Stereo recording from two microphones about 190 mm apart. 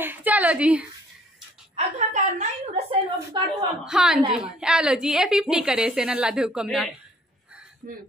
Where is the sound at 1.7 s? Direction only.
35° right (ahead or behind).